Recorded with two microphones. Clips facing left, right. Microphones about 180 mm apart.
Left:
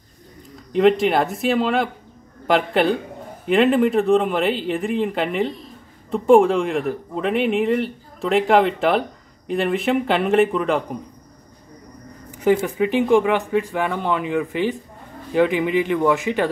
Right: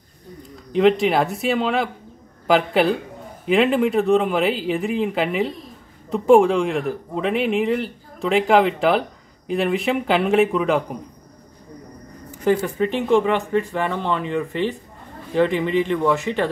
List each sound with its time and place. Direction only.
0.7 s speech: centre (ahead or behind)
12.4 s speech: 10° left (ahead or behind)